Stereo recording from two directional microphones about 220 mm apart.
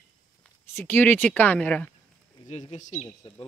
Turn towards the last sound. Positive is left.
turn(degrees=30)  # may be behind; listen again after turning